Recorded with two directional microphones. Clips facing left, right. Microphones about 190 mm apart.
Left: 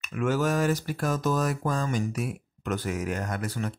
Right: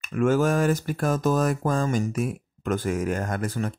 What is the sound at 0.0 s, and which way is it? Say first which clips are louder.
Speech: right 5 dB; 50° right (ahead or behind).